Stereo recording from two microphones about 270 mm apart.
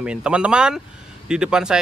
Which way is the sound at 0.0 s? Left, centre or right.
Centre.